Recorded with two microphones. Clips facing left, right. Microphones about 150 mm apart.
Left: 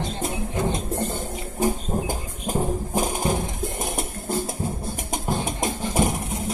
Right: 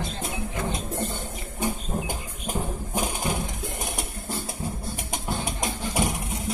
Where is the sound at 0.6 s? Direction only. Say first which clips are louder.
Left 5 dB; 20° left (ahead or behind).